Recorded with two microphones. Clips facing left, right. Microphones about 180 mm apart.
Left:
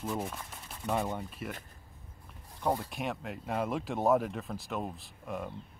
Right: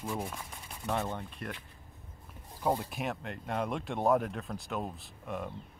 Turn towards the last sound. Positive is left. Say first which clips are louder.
# even
turn(degrees=0)  # may be behind; listen again after turning